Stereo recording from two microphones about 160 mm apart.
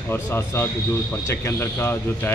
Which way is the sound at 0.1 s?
15° left (ahead or behind).